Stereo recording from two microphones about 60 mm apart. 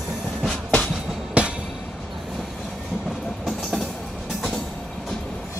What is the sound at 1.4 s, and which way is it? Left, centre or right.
Train, centre.